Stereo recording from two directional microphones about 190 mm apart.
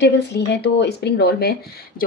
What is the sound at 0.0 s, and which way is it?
Speech, 65° left (ahead or behind).